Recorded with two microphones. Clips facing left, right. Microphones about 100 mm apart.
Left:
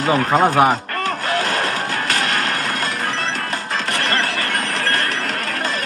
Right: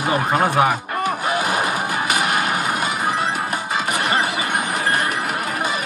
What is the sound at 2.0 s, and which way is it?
Vehicle, 10° right (ahead or behind).